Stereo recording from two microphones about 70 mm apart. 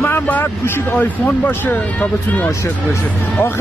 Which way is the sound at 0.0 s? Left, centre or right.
Left.